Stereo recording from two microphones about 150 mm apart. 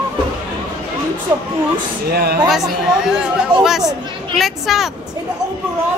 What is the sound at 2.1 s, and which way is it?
Speech, 90° right.